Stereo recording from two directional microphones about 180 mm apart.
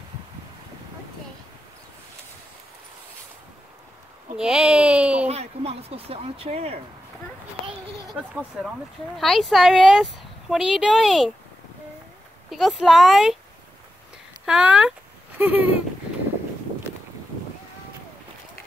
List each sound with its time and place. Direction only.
4.4 s a sound: 5° right (ahead or behind)
5.3 s speech: 35° right (ahead or behind)
8.1 s speech: 5° right (ahead or behind)
12.4 s speech: centre (ahead or behind)
14.4 s speech: 5° right (ahead or behind)